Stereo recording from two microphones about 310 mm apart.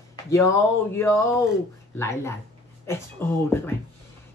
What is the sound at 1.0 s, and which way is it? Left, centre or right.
Speech, centre.